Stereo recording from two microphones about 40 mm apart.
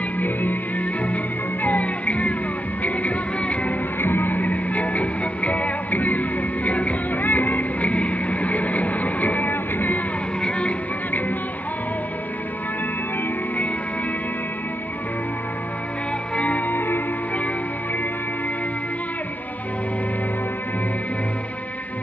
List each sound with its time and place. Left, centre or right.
0.2 s music: left
4.0 s music: left
16.3 s music: left
16.7 s music: left